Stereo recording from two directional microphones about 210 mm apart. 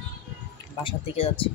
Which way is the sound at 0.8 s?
25° left (ahead or behind).